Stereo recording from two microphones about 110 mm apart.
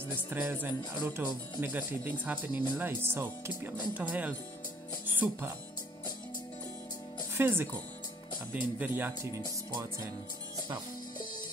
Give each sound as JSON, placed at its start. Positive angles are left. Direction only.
{"t": 0.0, "sound": "speech", "side_deg": -15}
{"t": 7.3, "sound": "speech", "side_deg": -20}